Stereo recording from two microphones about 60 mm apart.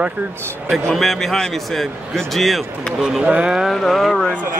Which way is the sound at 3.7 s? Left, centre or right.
Centre.